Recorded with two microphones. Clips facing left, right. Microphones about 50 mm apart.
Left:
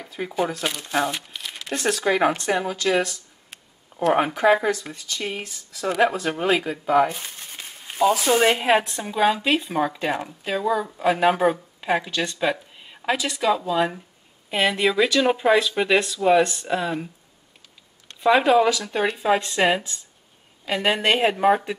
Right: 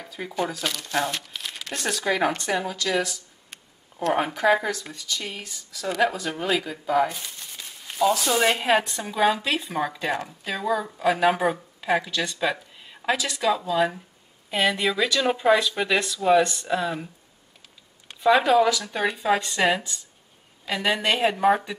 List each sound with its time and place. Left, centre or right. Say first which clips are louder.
0.0 s a sound: left 4 dB; centre
0.3 s speech: left 2 dB; centre; by 3.0 s left
3.0 s a sound: left 2 dB; centre
3.9 s a sound: left 4 dB; left
4.6 s speech: left 4 dB; left
6.3 s speech: left 4 dB; centre
7.2 s speech: left 2 dB; left; by 11.6 s centre
11.8 s speech: left 1 dB; centre
18.2 s speech: left 1 dB; centre